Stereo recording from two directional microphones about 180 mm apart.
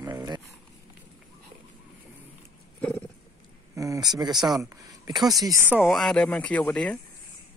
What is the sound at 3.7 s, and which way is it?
Speech, 20° right (ahead or behind).